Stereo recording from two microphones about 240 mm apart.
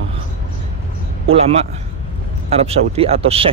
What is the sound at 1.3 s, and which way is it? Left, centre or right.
Speech, right.